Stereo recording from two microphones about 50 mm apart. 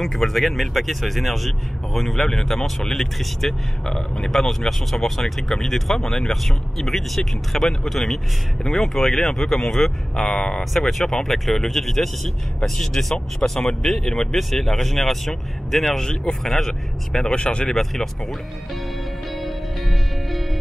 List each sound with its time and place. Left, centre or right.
0.0 s speech: centre
15.9 s speech: centre
17.2 s speech: centre
17.7 s speech: centre
19.3 s music: centre